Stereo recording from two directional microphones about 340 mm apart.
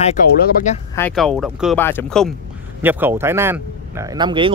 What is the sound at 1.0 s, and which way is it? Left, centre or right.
A man's voice, centre.